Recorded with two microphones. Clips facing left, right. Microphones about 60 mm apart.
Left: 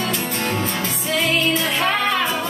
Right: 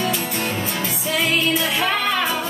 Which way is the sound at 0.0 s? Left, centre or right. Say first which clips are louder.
Even; centre.